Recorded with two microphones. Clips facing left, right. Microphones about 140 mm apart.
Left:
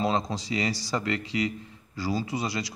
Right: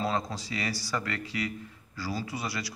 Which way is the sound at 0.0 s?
20° left (ahead or behind).